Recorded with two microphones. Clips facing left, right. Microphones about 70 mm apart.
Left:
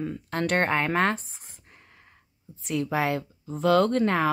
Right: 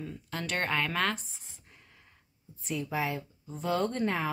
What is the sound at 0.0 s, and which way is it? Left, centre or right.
Speech, left.